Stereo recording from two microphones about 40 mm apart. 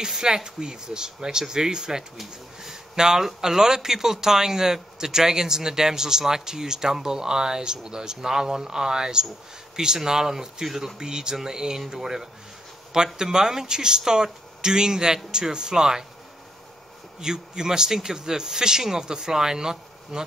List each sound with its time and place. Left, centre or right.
0.0 s speech: centre
17.2 s speech: centre